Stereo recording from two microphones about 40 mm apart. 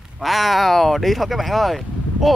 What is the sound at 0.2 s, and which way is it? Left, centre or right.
Speech, centre.